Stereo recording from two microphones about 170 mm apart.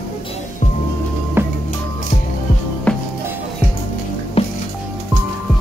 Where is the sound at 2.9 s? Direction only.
5° left (ahead or behind).